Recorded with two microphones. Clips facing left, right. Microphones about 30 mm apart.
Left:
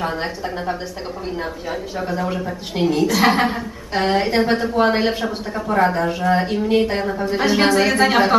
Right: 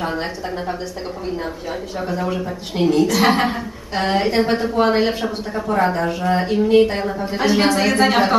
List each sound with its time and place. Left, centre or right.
0.0 s a woman's voice: centre